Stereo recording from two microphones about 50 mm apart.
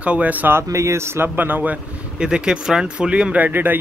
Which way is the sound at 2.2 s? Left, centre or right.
Centre.